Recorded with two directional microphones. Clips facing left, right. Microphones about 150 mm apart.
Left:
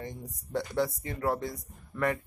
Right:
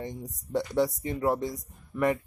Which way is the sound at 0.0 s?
20° right (ahead or behind).